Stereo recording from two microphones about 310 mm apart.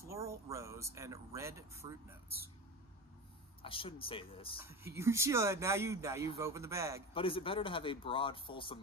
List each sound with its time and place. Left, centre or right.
0.0 s a sound: centre
0.8 s speech: centre
3.6 s speech: centre
4.6 s speech: centre
7.2 s speech: centre